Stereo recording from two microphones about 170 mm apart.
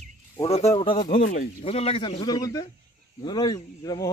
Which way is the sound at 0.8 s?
25° left (ahead or behind).